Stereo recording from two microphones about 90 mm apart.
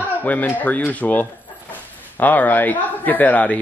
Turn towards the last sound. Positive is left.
turn(degrees=15)  # may be behind; listen again after turning